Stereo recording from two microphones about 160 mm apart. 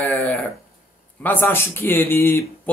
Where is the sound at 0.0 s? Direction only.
10° left (ahead or behind).